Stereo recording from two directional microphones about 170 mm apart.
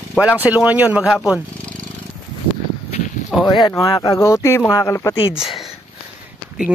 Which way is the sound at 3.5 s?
25° left (ahead or behind).